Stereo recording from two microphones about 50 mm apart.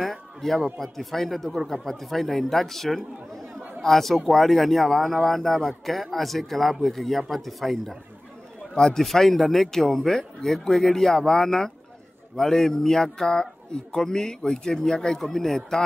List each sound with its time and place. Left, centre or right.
0.0 s speech: centre
8.7 s a man's voice: centre